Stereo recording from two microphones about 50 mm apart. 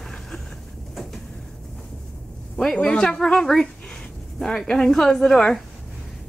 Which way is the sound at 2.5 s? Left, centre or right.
Centre.